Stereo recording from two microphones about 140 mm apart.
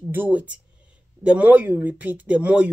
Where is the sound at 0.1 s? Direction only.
10° right (ahead or behind).